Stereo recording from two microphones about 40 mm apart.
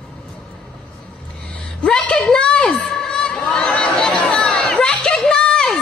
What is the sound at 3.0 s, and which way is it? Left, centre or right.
Crowd, left.